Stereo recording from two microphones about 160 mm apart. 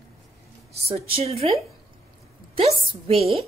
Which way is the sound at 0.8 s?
40° right (ahead or behind).